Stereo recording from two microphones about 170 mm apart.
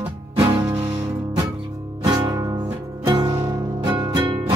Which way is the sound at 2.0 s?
20° right (ahead or behind).